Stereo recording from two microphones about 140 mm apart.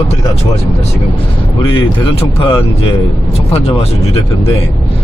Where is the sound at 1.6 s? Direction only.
40° left (ahead or behind).